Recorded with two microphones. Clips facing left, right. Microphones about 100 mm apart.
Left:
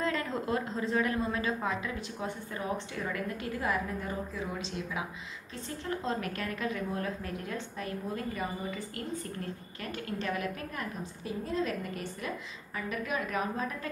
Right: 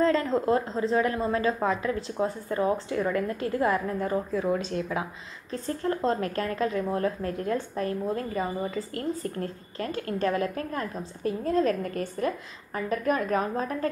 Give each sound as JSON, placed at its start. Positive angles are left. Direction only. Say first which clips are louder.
{"t": 0.0, "sound": "a woman's voice", "louder": "right 9 dB", "side_deg": -30}